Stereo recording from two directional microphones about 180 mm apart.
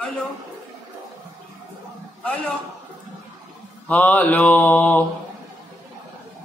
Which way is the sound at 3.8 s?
10° left (ahead or behind).